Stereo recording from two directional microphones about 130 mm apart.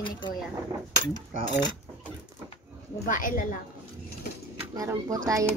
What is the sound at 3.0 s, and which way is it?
Speech, 90° left.